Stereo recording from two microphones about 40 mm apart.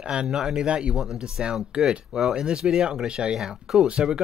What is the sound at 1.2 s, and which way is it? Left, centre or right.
Speech, centre.